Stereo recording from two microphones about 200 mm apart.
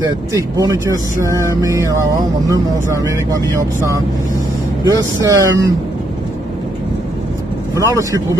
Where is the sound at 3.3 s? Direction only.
15° right (ahead or behind).